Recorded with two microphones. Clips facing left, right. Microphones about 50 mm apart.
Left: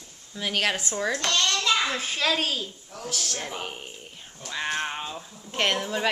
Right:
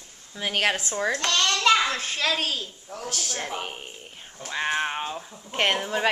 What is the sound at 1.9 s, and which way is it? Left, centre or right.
A woman's voice, centre.